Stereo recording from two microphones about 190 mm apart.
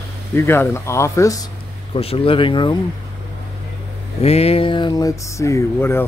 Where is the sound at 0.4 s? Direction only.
15° left (ahead or behind).